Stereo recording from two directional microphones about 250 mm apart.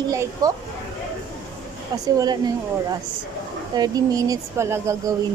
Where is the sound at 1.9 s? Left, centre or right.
Centre.